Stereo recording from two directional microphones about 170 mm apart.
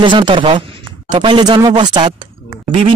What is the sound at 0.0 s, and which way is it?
Speech, 30° right (ahead or behind).